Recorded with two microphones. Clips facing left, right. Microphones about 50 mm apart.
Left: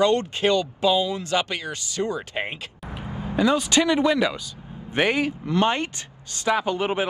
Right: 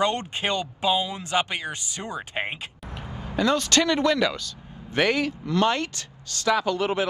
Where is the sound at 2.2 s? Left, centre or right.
Centre.